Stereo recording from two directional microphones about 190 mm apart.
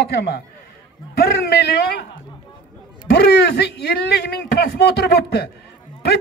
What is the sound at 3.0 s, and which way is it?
A man's voice, 60° left (ahead or behind).